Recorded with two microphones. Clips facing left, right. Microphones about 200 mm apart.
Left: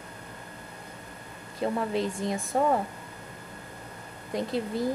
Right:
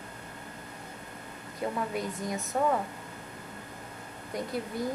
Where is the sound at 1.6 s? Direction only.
30° left (ahead or behind).